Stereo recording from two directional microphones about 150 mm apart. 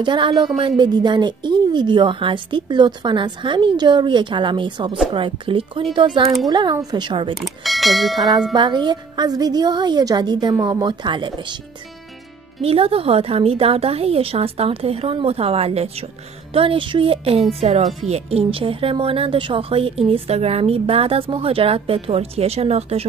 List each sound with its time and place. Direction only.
0.0 s speech: 30° right (ahead or behind)
7.3 s speech: centre (ahead or behind)
8.5 s a woman's voice: 30° right (ahead or behind)
12.6 s speech: 40° right (ahead or behind)